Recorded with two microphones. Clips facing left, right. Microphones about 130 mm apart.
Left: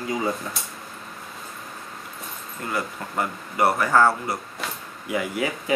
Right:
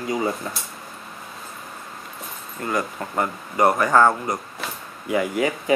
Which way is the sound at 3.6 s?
20° right (ahead or behind).